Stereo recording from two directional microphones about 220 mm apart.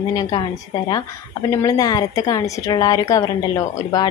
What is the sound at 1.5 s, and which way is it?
Speech, 15° left (ahead or behind).